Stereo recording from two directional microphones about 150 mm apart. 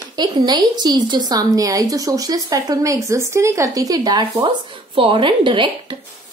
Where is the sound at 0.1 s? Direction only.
30° right (ahead or behind).